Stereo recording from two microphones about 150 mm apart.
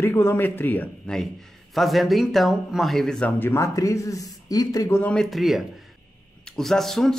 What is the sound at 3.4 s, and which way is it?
Speech, 20° left (ahead or behind).